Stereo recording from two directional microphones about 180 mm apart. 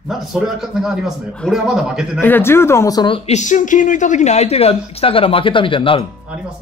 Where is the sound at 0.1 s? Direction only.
Centre (ahead or behind).